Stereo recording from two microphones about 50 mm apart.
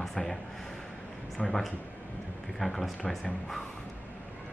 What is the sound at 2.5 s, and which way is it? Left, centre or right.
Speech, centre.